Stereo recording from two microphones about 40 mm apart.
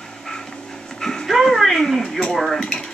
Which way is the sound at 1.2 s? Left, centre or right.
Centre.